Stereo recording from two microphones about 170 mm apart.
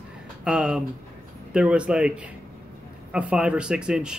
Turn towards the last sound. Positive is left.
turn(degrees=-5)  # may be behind; listen again after turning